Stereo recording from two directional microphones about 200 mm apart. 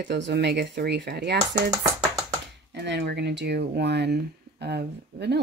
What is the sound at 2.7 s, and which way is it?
Speech, 60° right (ahead or behind).